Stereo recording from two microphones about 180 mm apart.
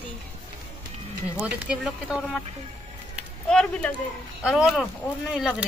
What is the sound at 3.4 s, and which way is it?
Speech, 5° left (ahead or behind).